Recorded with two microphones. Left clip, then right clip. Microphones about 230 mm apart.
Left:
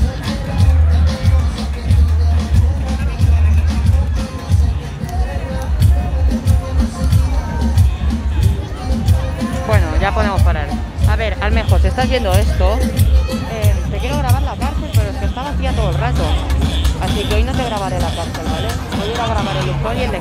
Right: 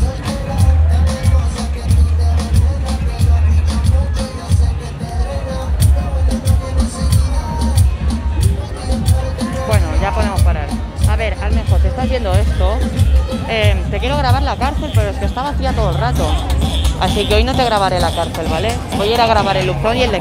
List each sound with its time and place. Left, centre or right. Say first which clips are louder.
9.7 s music: left 2 dB; centre
11.4 s music: left 4 dB; left
12.0 s music: left 2 dB; centre
13.5 s music: right 6 dB; right
17.3 s speech: right 6 dB; right; by 19.7 s centre
19.9 s speech: right 6 dB; right